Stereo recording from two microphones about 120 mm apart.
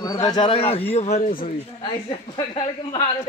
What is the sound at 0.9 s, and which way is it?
Speech, 70° left (ahead or behind).